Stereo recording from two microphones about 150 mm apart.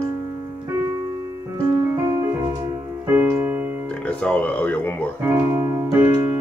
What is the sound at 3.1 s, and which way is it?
Keyboard, 15° right (ahead or behind).